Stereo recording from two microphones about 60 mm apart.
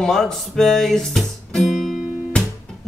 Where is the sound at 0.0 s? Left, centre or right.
Centre.